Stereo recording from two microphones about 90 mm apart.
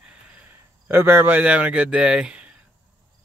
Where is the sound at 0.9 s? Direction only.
25° right (ahead or behind).